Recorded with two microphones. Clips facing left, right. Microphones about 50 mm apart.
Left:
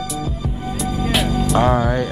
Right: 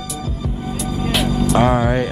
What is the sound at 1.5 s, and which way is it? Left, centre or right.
Speech, centre.